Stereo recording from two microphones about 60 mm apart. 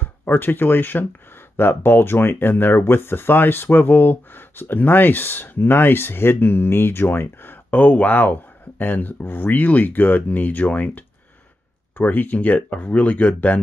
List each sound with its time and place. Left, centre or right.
0.0 s speech: left
7.8 s speech: left